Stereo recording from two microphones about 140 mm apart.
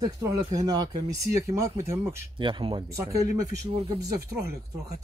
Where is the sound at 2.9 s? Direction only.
20° right (ahead or behind).